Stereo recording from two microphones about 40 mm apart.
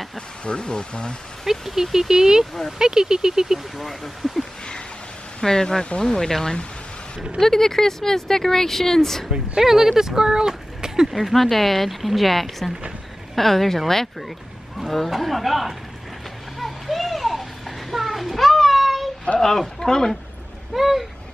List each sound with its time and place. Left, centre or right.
0.5 s speech: left
1.4 s speech: centre
3.7 s speech: centre
5.4 s speech: centre
9.6 s speech: centre
11.1 s speech: centre
16.5 s children playing: centre
19.4 s speech: centre
20.7 s speech: centre